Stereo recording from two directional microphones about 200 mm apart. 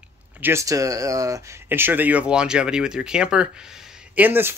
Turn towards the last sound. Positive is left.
turn(degrees=-10)  # may be behind; listen again after turning